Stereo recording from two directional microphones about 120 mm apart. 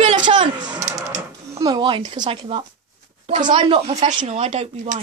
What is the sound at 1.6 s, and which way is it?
Speech, 40° right (ahead or behind).